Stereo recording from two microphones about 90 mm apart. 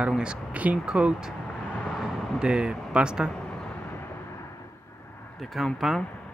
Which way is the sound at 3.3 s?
10° left (ahead or behind).